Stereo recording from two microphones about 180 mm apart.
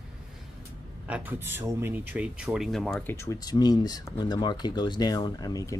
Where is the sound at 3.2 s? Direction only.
20° left (ahead or behind).